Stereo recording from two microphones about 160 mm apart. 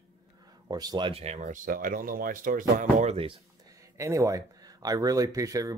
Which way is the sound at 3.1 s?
35° right (ahead or behind).